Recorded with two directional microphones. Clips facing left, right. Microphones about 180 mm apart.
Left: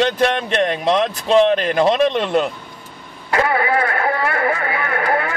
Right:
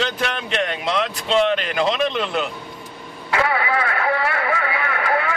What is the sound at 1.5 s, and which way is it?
Speech, 45° left (ahead or behind).